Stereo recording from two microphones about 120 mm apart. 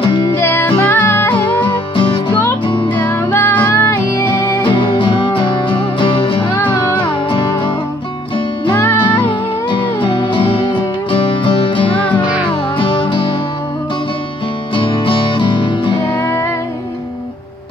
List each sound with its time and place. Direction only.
0.0 s music: 40° left (ahead or behind)
0.4 s music: 20° left (ahead or behind)
1.6 s music: 40° left (ahead or behind)
3.3 s music: 20° left (ahead or behind)
4.6 s music: 40° left (ahead or behind)
6.6 s music: 20° left (ahead or behind)
7.2 s music: 40° left (ahead or behind)
9.7 s music: 40° left (ahead or behind)
14.8 s music: 45° left (ahead or behind)
16.2 s music: 20° left (ahead or behind)